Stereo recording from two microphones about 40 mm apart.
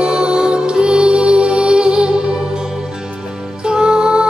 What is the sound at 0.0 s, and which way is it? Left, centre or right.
Music, centre.